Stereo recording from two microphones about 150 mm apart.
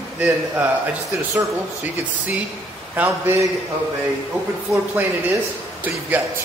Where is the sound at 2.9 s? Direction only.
15° right (ahead or behind).